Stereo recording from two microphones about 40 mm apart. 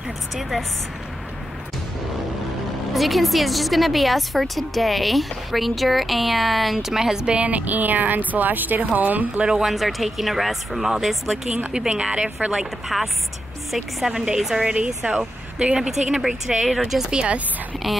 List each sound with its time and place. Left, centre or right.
2.9 s a woman's voice: centre
7.3 s speech: right
9.6 s a woman's voice: centre
11.7 s speech: right
12.9 s a woman's voice: centre
17.1 s speech: right
17.9 s a woman's voice: centre